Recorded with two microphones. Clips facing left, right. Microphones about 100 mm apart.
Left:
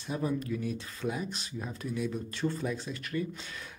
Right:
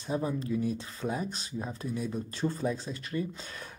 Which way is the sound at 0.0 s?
30° right (ahead or behind).